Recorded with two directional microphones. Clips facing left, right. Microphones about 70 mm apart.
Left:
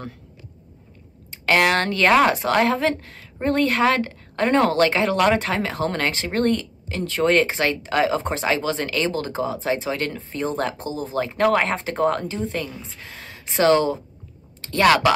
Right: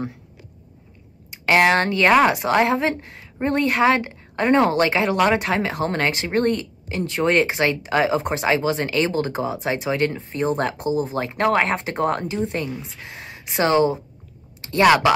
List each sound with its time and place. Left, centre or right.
1.3 s a woman's voice: centre